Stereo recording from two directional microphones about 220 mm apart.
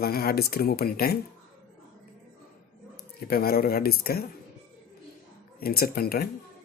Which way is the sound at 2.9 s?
45° left (ahead or behind).